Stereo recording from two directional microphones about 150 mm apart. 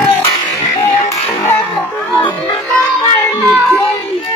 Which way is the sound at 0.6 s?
25° left (ahead or behind).